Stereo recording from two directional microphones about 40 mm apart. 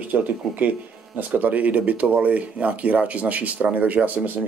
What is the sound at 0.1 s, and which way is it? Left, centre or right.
Speech, right.